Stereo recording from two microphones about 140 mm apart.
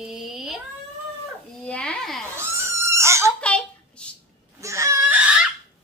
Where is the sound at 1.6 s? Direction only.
10° left (ahead or behind).